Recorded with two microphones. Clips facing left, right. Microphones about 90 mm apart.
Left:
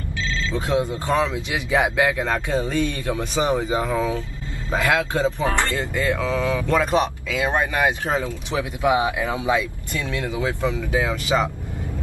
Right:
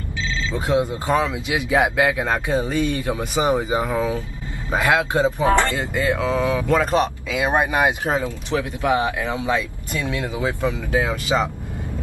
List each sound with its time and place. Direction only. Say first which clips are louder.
0.5 s speech: right 2 dB; 15° right (ahead or behind)
6.8 s speech: right 1 dB; centre (ahead or behind)
7.2 s speech: right 2 dB; 15° right (ahead or behind)
8.5 s speech: even; 10° left (ahead or behind)
9.9 s speech: right 1 dB; 20° right (ahead or behind)